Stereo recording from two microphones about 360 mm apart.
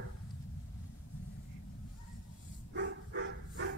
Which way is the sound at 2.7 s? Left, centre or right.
Right.